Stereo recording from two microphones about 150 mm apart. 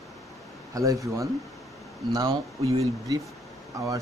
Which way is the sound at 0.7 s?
20° right (ahead or behind).